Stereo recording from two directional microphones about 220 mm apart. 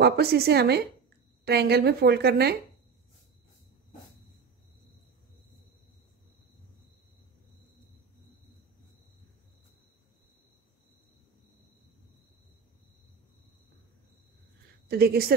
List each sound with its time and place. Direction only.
0.0 s a woman's voice: 45° right (ahead or behind)
14.9 s a woman's voice: 45° right (ahead or behind)